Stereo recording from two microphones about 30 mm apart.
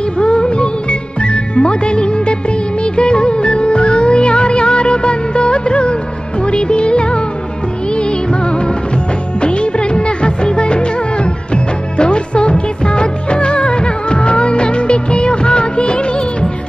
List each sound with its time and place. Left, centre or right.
0.2 s music: left